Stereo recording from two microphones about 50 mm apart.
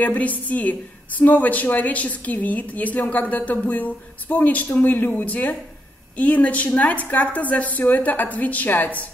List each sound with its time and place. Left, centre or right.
0.0 s a woman's voice: left